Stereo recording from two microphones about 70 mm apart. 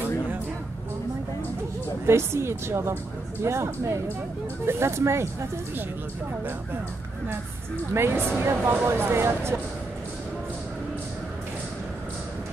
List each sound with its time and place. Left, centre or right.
2.0 s speech: right
7.9 s speech: right